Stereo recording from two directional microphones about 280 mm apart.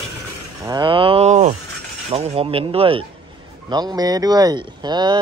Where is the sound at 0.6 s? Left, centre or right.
Centre.